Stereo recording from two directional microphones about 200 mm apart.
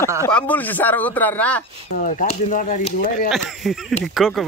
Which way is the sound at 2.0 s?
35° left (ahead or behind).